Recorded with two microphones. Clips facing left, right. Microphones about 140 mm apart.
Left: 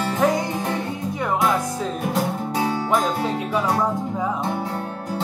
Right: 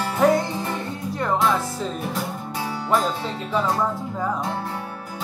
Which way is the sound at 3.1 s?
50° left (ahead or behind).